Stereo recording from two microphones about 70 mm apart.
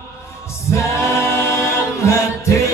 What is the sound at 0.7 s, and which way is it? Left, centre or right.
A capella, left.